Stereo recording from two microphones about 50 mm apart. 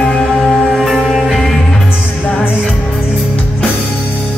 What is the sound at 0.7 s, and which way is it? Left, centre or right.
Music, centre.